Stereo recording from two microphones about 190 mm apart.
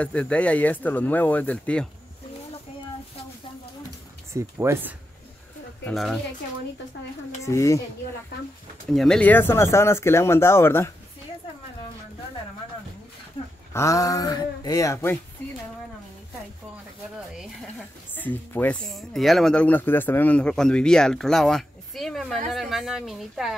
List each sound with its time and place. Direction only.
0.0 s speech: 5° left (ahead or behind)
4.3 s speech: 15° right (ahead or behind)
5.9 s speech: centre (ahead or behind)
7.4 s speech: 15° left (ahead or behind)
8.9 s speech: 5° left (ahead or behind)
13.7 s speech: 15° left (ahead or behind)
18.1 s speech: 10° left (ahead or behind)